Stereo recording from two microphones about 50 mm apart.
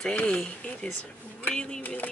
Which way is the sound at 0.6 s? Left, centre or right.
Left.